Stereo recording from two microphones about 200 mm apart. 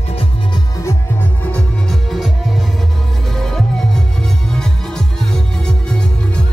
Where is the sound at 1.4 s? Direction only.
5° left (ahead or behind).